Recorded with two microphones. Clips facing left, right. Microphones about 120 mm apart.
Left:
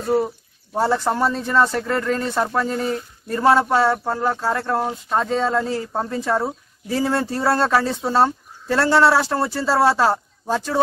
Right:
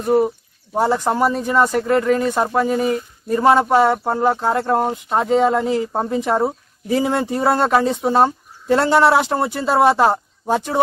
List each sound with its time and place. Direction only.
0.0 s speech: 15° right (ahead or behind)